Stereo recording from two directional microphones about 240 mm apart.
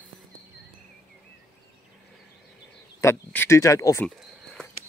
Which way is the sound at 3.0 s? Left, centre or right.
Centre.